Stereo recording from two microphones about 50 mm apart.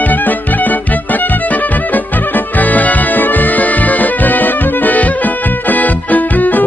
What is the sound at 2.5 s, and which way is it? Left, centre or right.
Music, left.